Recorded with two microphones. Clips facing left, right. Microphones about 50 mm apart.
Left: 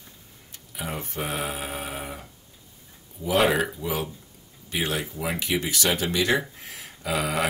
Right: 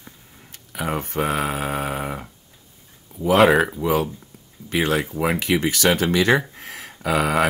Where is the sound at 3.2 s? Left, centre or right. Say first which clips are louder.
Right 7 dB; right.